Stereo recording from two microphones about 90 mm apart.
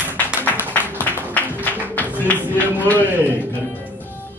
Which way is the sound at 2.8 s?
20° left (ahead or behind).